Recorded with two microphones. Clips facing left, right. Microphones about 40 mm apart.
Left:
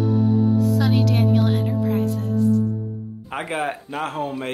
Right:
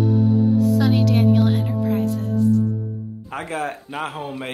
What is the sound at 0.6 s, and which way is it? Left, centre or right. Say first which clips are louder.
A woman's voice: right 2 dB; centre.